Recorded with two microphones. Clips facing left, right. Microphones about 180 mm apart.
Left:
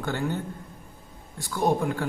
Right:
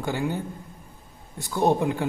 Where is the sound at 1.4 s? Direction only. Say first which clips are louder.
Right 2 dB; 20° right (ahead or behind).